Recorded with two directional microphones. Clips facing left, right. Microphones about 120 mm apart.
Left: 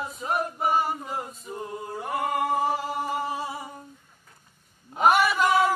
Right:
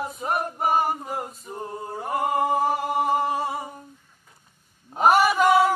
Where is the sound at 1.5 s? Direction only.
35° right (ahead or behind).